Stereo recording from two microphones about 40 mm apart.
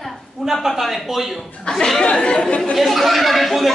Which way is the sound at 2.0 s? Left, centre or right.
Left.